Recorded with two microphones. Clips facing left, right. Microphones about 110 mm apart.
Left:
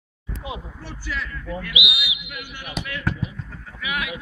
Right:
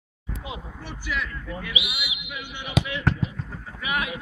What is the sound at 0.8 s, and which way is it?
Speech, 10° right (ahead or behind).